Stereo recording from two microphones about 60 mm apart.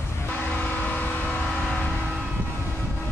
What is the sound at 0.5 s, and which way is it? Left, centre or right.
Train, left.